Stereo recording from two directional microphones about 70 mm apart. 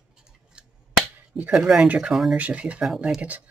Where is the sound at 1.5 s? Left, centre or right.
Centre.